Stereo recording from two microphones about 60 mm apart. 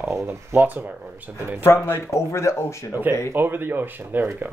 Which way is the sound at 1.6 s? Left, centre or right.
Left.